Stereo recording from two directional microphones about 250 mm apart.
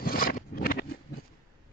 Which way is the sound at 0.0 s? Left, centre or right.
Left.